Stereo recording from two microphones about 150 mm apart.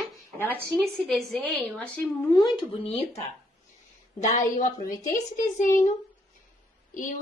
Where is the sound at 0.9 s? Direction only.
Centre (ahead or behind).